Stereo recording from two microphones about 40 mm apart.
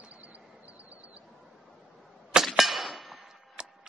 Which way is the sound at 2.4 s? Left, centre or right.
Centre.